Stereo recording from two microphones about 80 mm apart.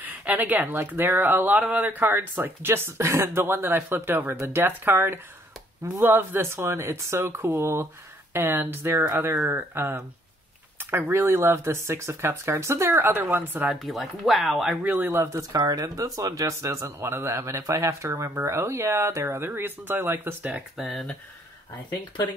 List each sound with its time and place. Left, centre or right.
0.0 s speech: right
13.7 s speech: centre
14.8 s speech: right
20.7 s speech: centre